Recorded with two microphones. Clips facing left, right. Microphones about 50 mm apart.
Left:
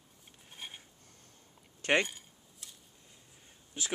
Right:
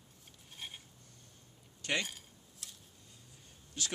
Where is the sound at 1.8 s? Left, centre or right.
Left.